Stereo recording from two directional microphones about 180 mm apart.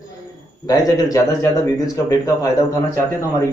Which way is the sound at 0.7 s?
20° left (ahead or behind).